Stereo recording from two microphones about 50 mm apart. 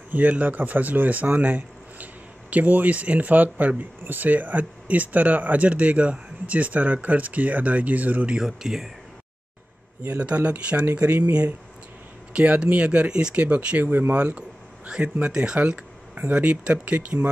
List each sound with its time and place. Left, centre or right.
0.1 s speech: right
8.4 s speech: centre
10.0 s speech: right
12.3 s speech: right
13.8 s speech: right
14.1 s speech: right